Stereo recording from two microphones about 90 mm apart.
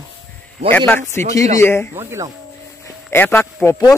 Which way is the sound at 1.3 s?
40° left (ahead or behind).